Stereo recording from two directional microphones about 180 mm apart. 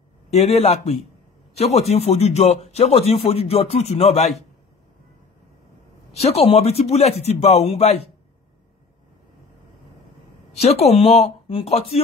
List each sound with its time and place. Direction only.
0.3 s speech: 35° left (ahead or behind)
6.1 s speech: 35° left (ahead or behind)
10.6 s speech: 35° left (ahead or behind)